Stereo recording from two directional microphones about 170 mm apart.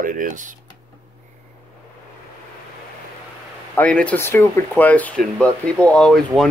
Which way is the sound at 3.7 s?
10° left (ahead or behind).